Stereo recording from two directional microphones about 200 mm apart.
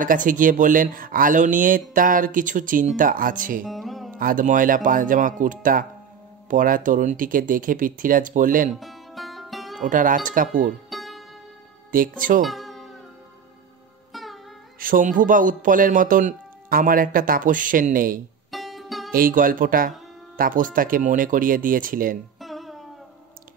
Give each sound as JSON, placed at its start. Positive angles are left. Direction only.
{"t": 0.0, "sound": "speech", "side_deg": -40}
{"t": 3.6, "sound": "music", "side_deg": 0}
{"t": 4.2, "sound": "speech", "side_deg": -45}
{"t": 8.7, "sound": "music", "side_deg": 0}
{"t": 9.8, "sound": "speech", "side_deg": -40}
{"t": 10.9, "sound": "music", "side_deg": 0}
{"t": 12.2, "sound": "speech", "side_deg": -45}
{"t": 12.4, "sound": "music", "side_deg": 0}
{"t": 14.1, "sound": "music", "side_deg": 0}
{"t": 14.8, "sound": "speech", "side_deg": -45}
{"t": 18.5, "sound": "music", "side_deg": 0}
{"t": 19.1, "sound": "speech", "side_deg": -45}
{"t": 22.4, "sound": "music", "side_deg": 0}